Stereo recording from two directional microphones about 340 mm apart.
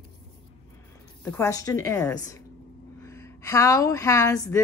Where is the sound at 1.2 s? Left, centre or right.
Centre.